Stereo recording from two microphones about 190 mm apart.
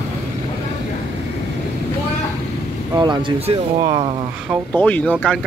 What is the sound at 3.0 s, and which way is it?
Speech, 25° right (ahead or behind).